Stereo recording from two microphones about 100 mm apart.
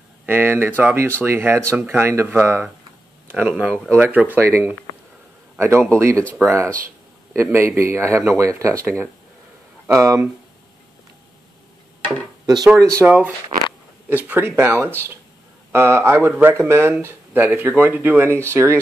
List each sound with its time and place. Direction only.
0.3 s speech: 20° right (ahead or behind)
12.6 s speech: 30° right (ahead or behind)
13.0 s speech: 15° right (ahead or behind)